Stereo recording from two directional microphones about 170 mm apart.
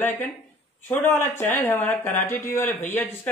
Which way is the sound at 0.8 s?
10° left (ahead or behind).